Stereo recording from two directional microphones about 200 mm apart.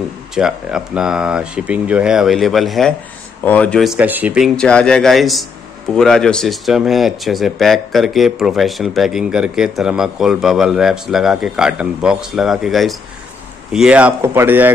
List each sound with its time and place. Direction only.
0.3 s speech: 5° right (ahead or behind)